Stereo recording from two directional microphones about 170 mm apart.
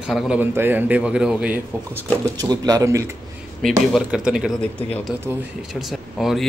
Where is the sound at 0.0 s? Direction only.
5° right (ahead or behind).